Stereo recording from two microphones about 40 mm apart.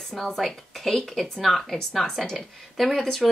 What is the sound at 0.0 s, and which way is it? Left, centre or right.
Speech, centre.